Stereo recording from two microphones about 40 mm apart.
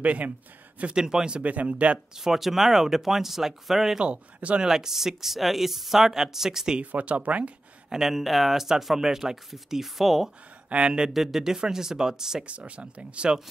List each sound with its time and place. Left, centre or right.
0.0 s speech: right
0.9 s speech: centre
1.4 s speech: right
2.1 s speech: centre
4.0 s speech: right
4.6 s speech: centre
6.8 s speech: right
7.9 s speech: centre
10.7 s speech: right
11.1 s speech: centre
12.4 s speech: right